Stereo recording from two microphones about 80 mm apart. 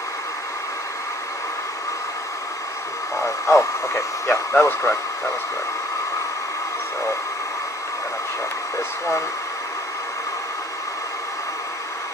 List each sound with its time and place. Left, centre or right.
3.2 s speech: left
8.7 s speech: left